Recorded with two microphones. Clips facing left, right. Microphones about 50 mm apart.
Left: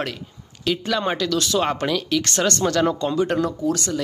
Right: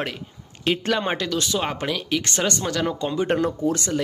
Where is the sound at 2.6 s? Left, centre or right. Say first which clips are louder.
Left 5 dB; centre.